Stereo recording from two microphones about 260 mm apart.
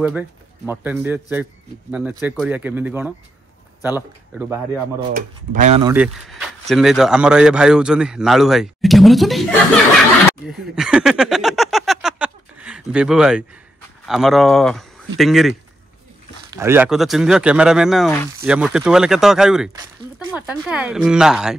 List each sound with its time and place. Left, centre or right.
0.7 s a man's voice: centre
5.1 s speech: right
5.9 s speech: centre
10.8 s a sound: centre
14.0 s speech: centre
16.5 s speech: centre